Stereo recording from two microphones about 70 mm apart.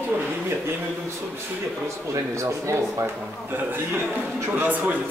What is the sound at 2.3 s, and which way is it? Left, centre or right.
Speech, right.